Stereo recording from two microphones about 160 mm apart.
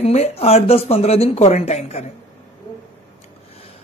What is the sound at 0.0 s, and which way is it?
A man's voice, 40° left (ahead or behind).